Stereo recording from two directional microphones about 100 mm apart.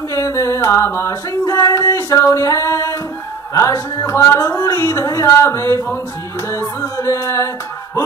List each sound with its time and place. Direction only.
0.1 s a sound: 30° left (ahead or behind)
3.5 s speech: 30° left (ahead or behind)
7.0 s music: 30° left (ahead or behind)